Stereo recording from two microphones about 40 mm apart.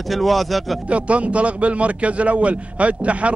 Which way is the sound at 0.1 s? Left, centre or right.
Centre.